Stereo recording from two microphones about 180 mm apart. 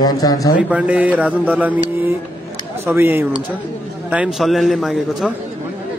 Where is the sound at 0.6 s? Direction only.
5° right (ahead or behind).